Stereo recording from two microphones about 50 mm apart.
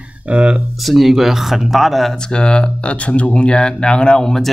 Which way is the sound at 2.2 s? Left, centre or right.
Centre.